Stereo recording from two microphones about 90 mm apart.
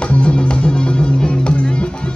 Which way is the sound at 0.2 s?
10° left (ahead or behind).